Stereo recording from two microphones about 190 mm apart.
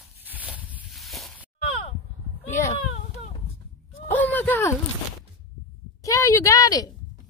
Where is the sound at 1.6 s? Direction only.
30° left (ahead or behind).